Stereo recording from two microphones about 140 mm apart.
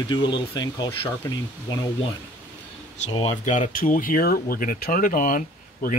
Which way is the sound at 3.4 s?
65° left (ahead or behind).